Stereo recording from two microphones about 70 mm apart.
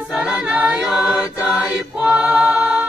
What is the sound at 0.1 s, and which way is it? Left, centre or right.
A capella, centre.